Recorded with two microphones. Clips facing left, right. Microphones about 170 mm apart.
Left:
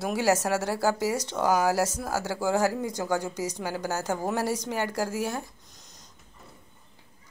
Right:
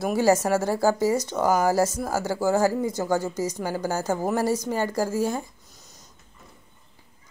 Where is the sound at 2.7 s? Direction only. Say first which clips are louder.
Right 5 dB; 10° left (ahead or behind).